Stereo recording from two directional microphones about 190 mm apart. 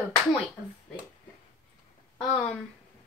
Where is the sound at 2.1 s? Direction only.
5° left (ahead or behind).